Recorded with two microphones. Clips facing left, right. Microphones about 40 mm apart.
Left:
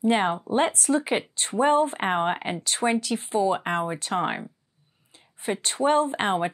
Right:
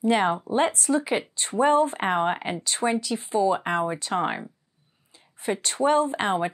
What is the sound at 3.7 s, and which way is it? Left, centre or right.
Speech, centre.